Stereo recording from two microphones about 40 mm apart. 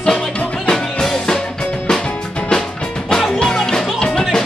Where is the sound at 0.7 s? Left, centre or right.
Centre.